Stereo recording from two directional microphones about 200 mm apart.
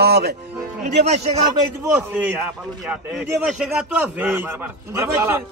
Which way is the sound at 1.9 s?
5° right (ahead or behind).